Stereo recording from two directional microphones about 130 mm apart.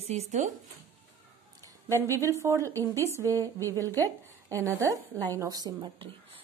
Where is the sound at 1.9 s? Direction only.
20° right (ahead or behind).